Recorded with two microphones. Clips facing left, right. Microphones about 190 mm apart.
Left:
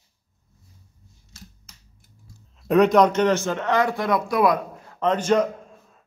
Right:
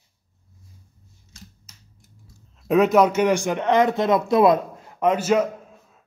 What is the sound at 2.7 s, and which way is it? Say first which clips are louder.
A man's voice: even; 5° right (ahead or behind).